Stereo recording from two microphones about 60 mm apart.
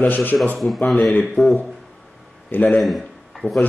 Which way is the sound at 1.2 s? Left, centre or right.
Centre.